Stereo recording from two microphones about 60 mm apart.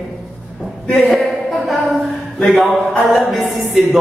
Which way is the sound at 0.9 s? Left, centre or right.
Centre.